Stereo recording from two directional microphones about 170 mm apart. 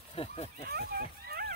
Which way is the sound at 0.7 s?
65° right (ahead or behind).